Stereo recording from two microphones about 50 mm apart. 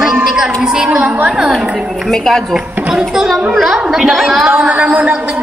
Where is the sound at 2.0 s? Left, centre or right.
Centre.